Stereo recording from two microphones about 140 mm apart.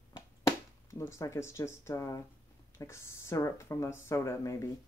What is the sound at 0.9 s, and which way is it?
Speech, 20° left (ahead or behind).